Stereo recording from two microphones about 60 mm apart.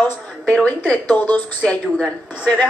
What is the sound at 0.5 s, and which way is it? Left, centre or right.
Speech, left.